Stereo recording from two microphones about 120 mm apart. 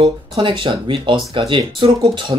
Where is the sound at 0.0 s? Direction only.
45° right (ahead or behind).